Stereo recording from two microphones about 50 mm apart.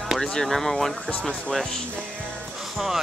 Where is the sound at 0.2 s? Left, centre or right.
Centre.